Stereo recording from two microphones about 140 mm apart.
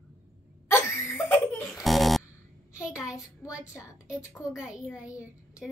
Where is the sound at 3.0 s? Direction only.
5° right (ahead or behind).